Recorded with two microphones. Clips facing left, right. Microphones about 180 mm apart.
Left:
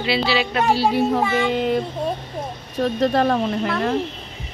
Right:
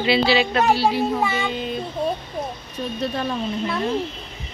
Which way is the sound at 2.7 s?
90° left.